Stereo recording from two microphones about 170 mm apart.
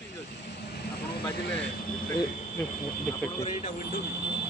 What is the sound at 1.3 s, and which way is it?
Speech, 80° left.